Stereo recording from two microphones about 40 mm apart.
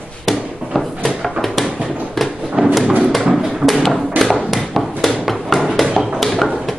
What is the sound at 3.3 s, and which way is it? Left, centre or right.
Tap, centre.